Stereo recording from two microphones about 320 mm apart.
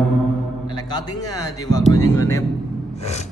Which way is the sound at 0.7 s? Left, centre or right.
Centre.